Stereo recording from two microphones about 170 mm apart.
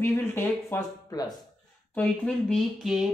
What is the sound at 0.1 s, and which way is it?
Speech, 15° left (ahead or behind).